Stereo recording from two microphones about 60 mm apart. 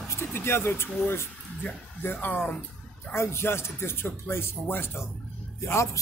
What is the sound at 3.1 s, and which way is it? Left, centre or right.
Speech, left.